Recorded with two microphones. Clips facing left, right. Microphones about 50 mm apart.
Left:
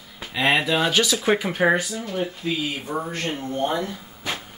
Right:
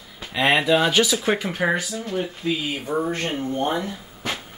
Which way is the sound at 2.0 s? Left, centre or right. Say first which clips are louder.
Right 1 dB; centre.